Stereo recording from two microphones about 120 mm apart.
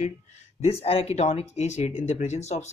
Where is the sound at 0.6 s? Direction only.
55° left (ahead or behind).